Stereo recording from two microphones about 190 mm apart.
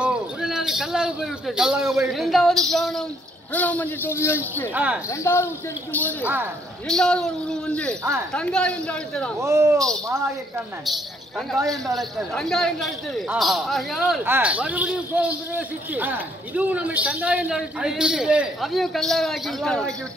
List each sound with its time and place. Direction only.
0.0 s a man's voice: 5° right (ahead or behind); by 4.4 s 15° left (ahead or behind)
4.7 s speech: 5° right (ahead or behind)
5.2 s a man's voice: 15° left (ahead or behind)
6.2 s speech: 10° right (ahead or behind)
6.9 s speech: 5° left (ahead or behind)
9.4 s speech: 15° right (ahead or behind)
10.9 s speech: centre (ahead or behind)